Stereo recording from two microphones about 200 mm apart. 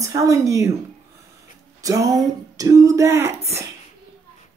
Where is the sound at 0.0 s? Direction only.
15° right (ahead or behind).